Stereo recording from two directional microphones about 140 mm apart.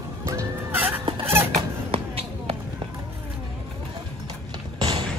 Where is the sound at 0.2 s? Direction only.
20° right (ahead or behind).